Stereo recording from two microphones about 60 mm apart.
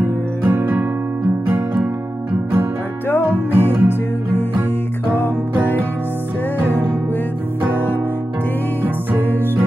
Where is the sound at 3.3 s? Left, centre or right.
Right.